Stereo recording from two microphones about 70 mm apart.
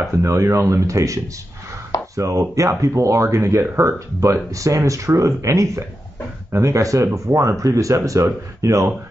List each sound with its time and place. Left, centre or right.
0.2 s speech: right